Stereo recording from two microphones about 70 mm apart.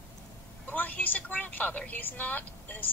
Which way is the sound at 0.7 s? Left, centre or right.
Left.